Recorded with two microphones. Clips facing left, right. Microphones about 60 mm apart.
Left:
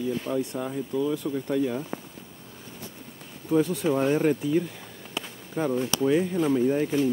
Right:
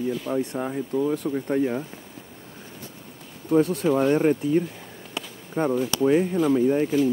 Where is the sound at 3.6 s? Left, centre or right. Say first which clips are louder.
Right 3 dB; right.